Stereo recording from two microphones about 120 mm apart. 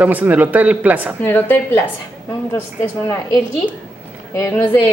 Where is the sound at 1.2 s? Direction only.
15° left (ahead or behind).